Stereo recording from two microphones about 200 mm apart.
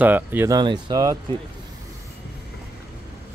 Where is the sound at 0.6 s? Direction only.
20° right (ahead or behind).